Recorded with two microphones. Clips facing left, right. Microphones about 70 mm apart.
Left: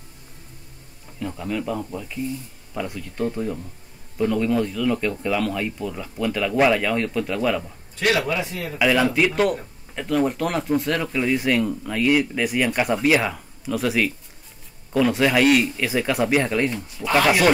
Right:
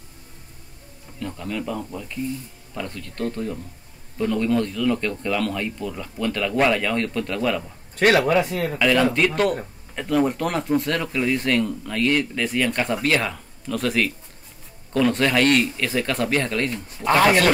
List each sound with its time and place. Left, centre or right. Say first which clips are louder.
1.2 s speech: left 2 dB; centre
7.9 s a sound: right 4 dB; right
8.3 s speech: right 6 dB; right
8.7 s speech: left 1 dB; centre